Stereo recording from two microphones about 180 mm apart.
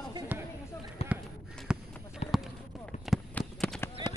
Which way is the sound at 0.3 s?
10° right (ahead or behind).